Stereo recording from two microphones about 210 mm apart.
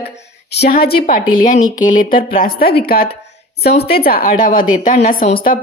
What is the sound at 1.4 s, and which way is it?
Speech, 35° left (ahead or behind).